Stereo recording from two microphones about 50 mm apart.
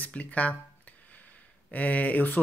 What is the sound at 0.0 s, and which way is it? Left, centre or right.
Speech, left.